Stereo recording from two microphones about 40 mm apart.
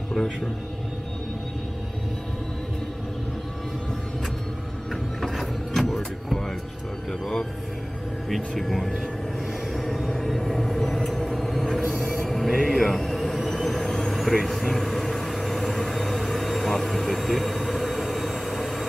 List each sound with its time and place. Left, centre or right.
5.2 s a sound: centre
8.5 s speech: centre
9.7 s vehicle: centre